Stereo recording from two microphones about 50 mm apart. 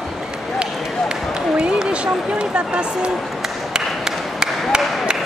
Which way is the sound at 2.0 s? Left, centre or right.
Right.